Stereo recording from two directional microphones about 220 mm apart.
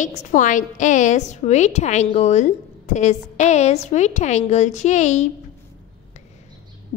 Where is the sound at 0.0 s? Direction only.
35° left (ahead or behind).